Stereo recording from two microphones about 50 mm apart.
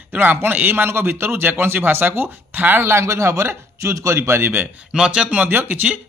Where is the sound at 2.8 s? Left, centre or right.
Right.